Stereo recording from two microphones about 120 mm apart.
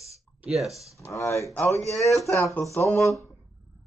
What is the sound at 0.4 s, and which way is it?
Speech, centre (ahead or behind).